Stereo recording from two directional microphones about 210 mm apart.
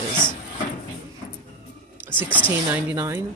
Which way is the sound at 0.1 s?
20° left (ahead or behind).